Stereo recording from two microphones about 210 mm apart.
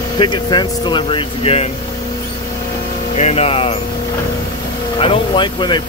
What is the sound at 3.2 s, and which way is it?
Speech, 30° left (ahead or behind).